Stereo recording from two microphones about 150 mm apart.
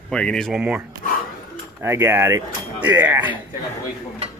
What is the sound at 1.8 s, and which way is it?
A man's voice, 15° right (ahead or behind).